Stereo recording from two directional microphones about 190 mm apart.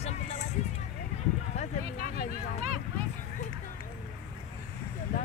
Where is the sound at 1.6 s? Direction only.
45° left (ahead or behind).